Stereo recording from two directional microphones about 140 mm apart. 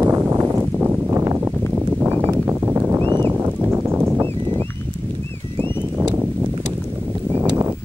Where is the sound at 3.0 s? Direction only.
35° right (ahead or behind).